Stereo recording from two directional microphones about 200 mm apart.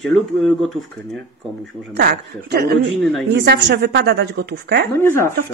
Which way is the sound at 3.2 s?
60° right (ahead or behind).